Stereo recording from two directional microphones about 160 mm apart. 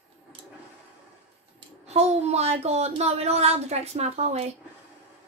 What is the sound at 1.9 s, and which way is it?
A child's voice, 40° right (ahead or behind).